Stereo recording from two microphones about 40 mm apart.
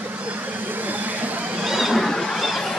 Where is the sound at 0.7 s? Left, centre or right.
Right.